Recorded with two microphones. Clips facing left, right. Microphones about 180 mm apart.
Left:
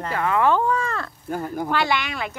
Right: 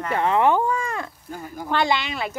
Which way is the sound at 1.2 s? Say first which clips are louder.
Left 7 dB; 55° left (ahead or behind).